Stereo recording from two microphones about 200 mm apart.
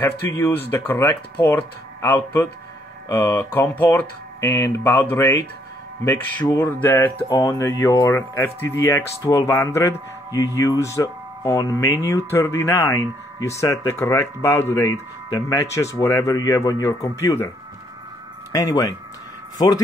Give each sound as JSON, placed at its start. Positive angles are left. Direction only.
{"t": 0.0, "sound": "speech", "side_deg": 10}
{"t": 18.5, "sound": "speech", "side_deg": 15}